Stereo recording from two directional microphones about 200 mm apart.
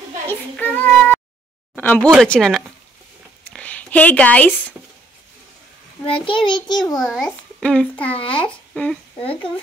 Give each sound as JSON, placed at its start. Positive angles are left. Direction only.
{"t": 0.3, "sound": "a child's voice", "side_deg": 10}
{"t": 6.0, "sound": "a child's voice", "side_deg": 25}
{"t": 7.0, "sound": "a child's voice", "side_deg": 5}
{"t": 8.0, "sound": "a child's voice", "side_deg": 25}